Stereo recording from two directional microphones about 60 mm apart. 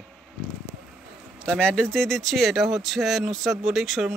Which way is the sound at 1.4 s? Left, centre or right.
Centre.